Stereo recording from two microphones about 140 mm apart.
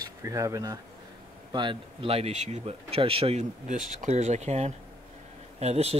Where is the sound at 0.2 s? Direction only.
20° right (ahead or behind).